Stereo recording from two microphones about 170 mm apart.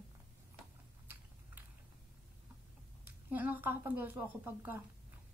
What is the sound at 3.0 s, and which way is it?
A woman's voice, 10° right (ahead or behind).